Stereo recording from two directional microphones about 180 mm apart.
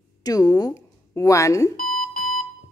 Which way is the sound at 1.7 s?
50° left (ahead or behind).